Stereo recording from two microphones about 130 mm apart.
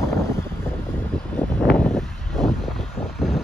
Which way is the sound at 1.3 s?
10° left (ahead or behind).